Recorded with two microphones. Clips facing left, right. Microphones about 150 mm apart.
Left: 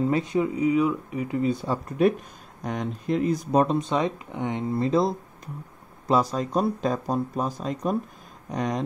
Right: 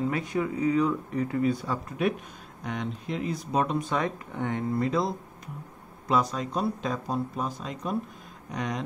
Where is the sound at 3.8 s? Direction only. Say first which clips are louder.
Left 3 dB; 20° left (ahead or behind).